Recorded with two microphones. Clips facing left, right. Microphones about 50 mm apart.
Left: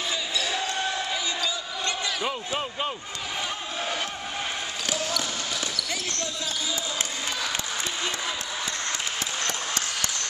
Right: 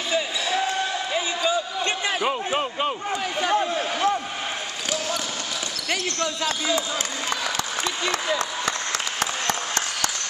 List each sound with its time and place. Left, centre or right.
0.1 s basketball bounce: centre
2.2 s basketball bounce: centre
3.3 s a sound: right
5.9 s speech: right
8.0 s applause: right